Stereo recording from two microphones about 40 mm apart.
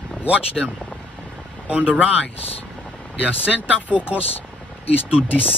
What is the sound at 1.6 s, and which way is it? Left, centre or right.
Speech, right.